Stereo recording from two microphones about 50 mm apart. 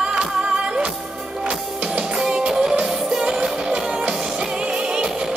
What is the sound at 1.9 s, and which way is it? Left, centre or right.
Music, centre.